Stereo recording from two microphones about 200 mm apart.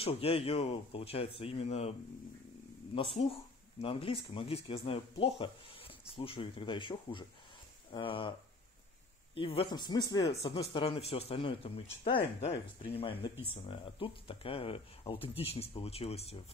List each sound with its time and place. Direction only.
0.0 s speech: 30° left (ahead or behind)
3.8 s speech: 25° left (ahead or behind)
10.4 s speech: 30° left (ahead or behind)